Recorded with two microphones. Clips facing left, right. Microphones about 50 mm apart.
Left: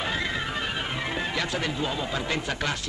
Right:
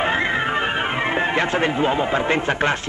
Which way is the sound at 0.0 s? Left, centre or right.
Right.